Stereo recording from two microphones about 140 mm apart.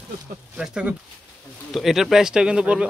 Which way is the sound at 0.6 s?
5° right (ahead or behind).